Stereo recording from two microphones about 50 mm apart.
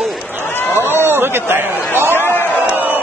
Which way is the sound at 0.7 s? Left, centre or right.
Right.